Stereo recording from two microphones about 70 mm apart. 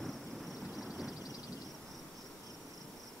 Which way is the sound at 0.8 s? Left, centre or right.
Centre.